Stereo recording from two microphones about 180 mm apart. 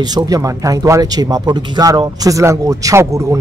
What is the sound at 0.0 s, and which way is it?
Speech, 20° right (ahead or behind).